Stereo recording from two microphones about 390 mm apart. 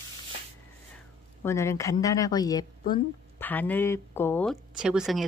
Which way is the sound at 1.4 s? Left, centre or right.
Centre.